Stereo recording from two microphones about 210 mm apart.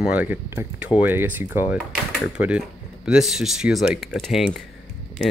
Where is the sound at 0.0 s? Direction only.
5° right (ahead or behind).